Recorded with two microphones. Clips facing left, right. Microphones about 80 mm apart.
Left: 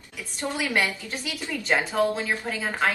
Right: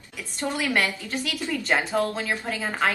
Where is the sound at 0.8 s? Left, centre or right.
Centre.